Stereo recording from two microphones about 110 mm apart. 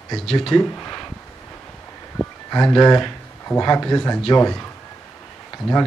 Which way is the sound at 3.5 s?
30° left (ahead or behind).